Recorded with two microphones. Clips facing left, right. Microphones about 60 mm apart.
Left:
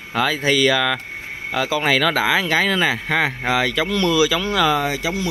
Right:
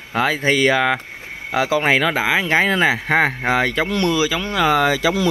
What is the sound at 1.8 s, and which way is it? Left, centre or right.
Speech, right.